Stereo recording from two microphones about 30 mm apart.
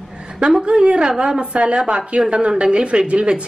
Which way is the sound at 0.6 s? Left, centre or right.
Right.